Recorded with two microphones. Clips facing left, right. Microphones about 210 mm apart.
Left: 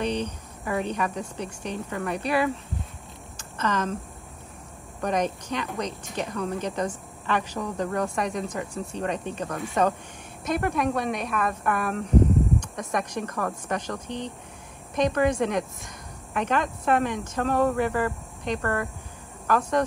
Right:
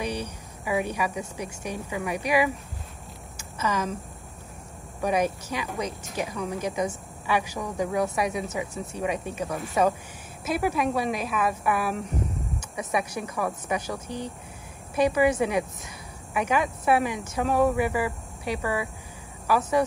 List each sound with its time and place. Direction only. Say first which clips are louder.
0.0 s speech: left 3 dB; 10° right (ahead or behind)
3.3 s a sound: left 1 dB; 10° right (ahead or behind)
5.0 s a woman's voice: right 1 dB; 10° right (ahead or behind)